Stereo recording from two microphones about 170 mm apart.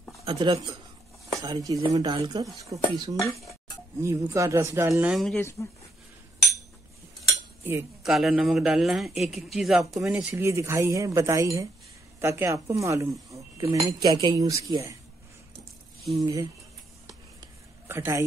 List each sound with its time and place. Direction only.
0.2 s speech: 30° right (ahead or behind)
3.2 s speech: 20° left (ahead or behind)
4.0 s speech: 20° right (ahead or behind)
5.0 s a man's voice: centre (ahead or behind)
5.4 s speech: 15° left (ahead or behind)
8.0 s a man's voice: centre (ahead or behind); by 15.0 s 20° right (ahead or behind)
16.2 s speech: 20° right (ahead or behind)
17.8 s speech: 15° right (ahead or behind)